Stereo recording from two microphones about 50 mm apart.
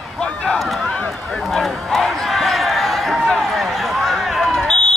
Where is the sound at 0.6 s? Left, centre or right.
Centre.